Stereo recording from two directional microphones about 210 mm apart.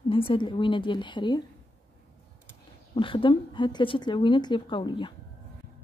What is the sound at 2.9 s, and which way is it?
Speech, 25° left (ahead or behind).